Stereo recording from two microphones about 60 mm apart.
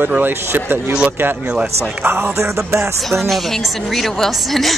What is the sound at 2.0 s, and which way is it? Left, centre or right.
Speech, right.